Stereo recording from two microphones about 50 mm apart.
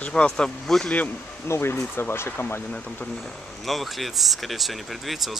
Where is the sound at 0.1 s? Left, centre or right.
Centre.